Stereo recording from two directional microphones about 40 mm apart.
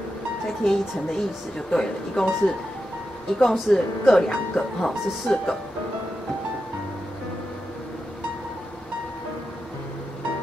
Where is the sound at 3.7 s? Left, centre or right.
Left.